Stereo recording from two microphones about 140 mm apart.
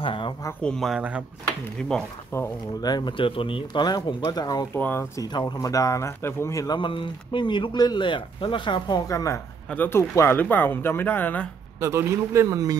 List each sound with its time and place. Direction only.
0.0 s speech: 40° left (ahead or behind)
0.6 s speech: 5° left (ahead or behind)
2.3 s speech: 20° left (ahead or behind)
2.8 s speech: 30° left (ahead or behind)
4.7 s speech: 15° left (ahead or behind)
6.8 s speech: 35° left (ahead or behind); by 11.4 s 15° left (ahead or behind)
11.8 s speech: 20° right (ahead or behind)